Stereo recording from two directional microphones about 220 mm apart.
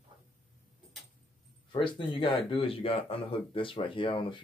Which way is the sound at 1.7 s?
20° left (ahead or behind).